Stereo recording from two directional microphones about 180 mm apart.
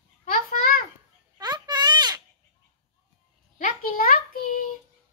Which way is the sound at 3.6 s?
50° left (ahead or behind).